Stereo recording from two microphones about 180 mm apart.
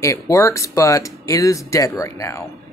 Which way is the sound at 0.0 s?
15° left (ahead or behind).